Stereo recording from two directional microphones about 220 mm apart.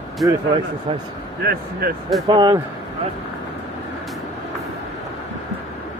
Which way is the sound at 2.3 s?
20° right (ahead or behind).